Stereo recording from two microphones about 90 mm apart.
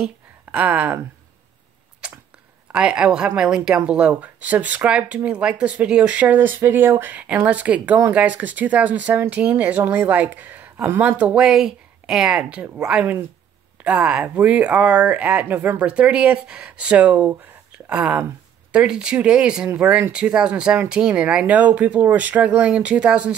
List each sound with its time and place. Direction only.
0.5 s speech: 20° right (ahead or behind)
2.7 s a woman's voice: 10° right (ahead or behind)